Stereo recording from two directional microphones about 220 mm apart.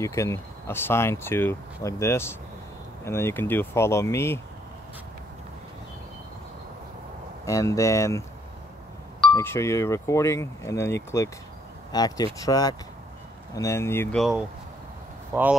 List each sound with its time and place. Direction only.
0.0 s speech: 15° left (ahead or behind)
7.4 s speech: 15° left (ahead or behind)
9.3 s speech: 10° left (ahead or behind)
15.3 s speech: 10° right (ahead or behind)